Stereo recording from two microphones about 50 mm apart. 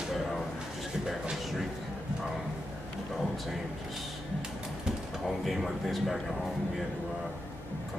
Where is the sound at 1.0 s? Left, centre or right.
Centre.